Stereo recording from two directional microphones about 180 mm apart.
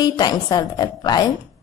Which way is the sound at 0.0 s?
20° left (ahead or behind).